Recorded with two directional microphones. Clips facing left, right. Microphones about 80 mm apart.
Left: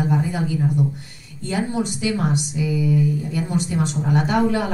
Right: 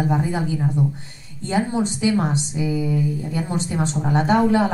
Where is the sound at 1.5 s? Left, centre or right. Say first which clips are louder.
Right 2 dB; right.